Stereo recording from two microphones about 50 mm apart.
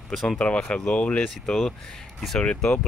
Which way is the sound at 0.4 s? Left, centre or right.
Centre.